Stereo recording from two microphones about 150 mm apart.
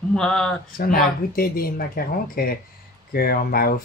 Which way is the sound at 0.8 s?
75° left (ahead or behind).